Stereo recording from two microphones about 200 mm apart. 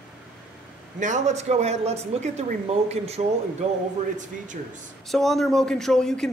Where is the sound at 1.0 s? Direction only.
35° right (ahead or behind).